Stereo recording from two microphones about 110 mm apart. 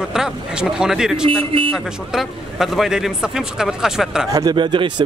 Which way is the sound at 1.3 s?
55° right (ahead or behind).